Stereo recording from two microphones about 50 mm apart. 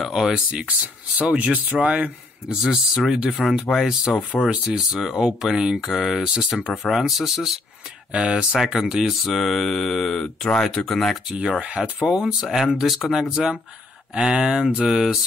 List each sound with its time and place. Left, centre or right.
0.0 s a sound: centre
0.5 s speech: right
2.6 s mantra: centre
4.5 s speech: right
4.9 s speech: centre
6.9 s mantra: centre
8.1 s speech: centre
9.2 s mantra: centre
10.2 s speech: centre
11.8 s speech: centre
12.7 s mantra: centre
14.1 s speech: centre